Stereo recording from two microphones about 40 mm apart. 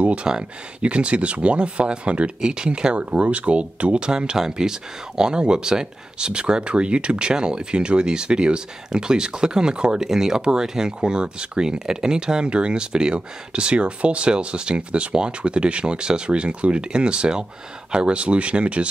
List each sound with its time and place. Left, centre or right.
0.0 s speech: right
3.0 s speech: right